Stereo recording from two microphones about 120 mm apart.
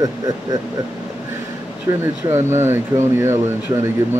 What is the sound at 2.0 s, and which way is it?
Speech, 20° right (ahead or behind).